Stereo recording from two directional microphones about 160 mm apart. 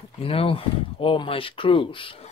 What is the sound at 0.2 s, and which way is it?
Speech, 35° left (ahead or behind).